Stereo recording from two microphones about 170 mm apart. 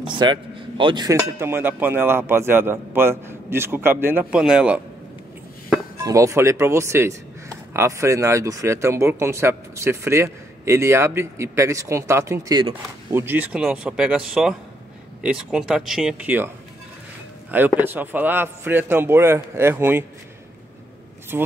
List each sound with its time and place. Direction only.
0.0 s speech: 30° right (ahead or behind)
1.4 s speech: 10° right (ahead or behind)
5.9 s speech: 20° right (ahead or behind)
17.5 s speech: 10° right (ahead or behind)
21.3 s speech: 10° right (ahead or behind)